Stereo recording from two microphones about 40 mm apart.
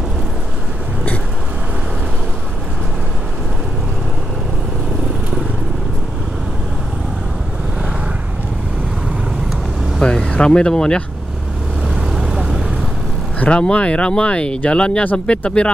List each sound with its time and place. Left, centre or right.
10.0 s vehicle: left
10.3 s speech: left
12.1 s vehicle: centre
13.5 s speech: left